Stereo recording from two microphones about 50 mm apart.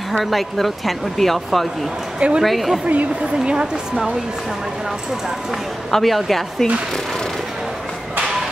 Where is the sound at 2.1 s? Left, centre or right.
Right.